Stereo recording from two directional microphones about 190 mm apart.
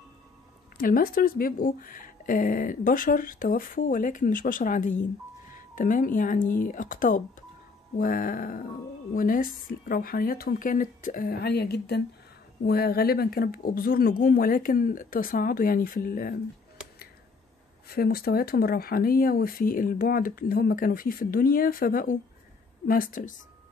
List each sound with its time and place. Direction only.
0.7 s speech: 50° left (ahead or behind)
17.8 s speech: 55° left (ahead or behind)